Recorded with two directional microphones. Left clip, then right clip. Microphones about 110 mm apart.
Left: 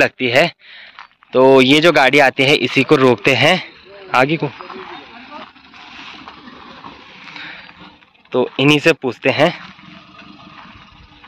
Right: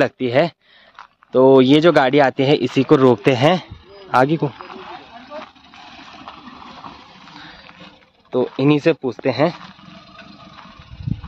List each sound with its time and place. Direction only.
0.0 s speech: 20° right (ahead or behind)
6.7 s a sound: 15° right (ahead or behind)
8.5 s speech: centre (ahead or behind)